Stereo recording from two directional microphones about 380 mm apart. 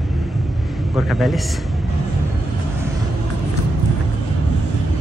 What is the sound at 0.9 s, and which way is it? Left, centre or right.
Speech, centre.